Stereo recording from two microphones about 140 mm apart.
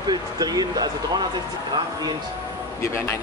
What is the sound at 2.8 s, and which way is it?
Speech, 20° left (ahead or behind).